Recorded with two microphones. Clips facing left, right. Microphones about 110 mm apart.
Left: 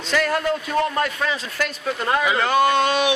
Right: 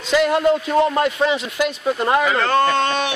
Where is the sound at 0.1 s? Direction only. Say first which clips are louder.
Right 5 dB; 20° right (ahead or behind).